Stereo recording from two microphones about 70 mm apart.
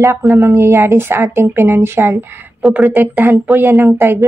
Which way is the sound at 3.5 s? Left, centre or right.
Right.